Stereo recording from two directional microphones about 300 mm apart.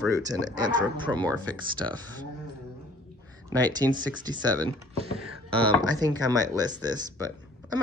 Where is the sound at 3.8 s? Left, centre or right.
Centre.